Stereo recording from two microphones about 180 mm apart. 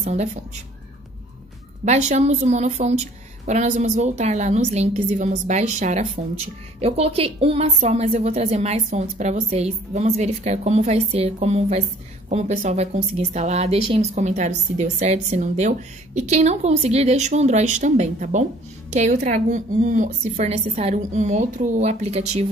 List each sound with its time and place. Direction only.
0.0 s a woman's voice: 35° right (ahead or behind)
1.9 s a woman's voice: 40° right (ahead or behind)